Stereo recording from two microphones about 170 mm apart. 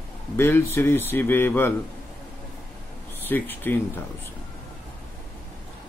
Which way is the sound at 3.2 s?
10° left (ahead or behind).